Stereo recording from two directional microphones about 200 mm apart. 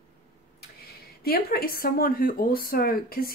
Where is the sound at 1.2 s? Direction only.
50° left (ahead or behind).